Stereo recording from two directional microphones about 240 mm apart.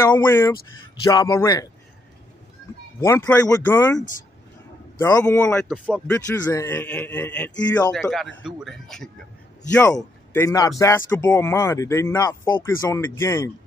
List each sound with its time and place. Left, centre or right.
0.0 s speech: centre
3.0 s speech: centre
5.0 s speech: centre
6.1 s speech: centre